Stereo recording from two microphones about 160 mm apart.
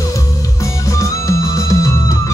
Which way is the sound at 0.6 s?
20° left (ahead or behind).